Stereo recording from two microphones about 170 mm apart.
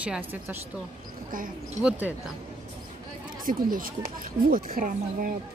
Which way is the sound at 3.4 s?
55° right (ahead or behind).